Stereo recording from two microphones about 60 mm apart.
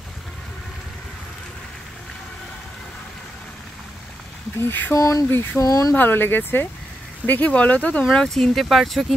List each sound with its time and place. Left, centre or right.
4.6 s speech: left
4.9 s speech: left
5.6 s speech: left
5.9 s speech: left
8.1 s speech: centre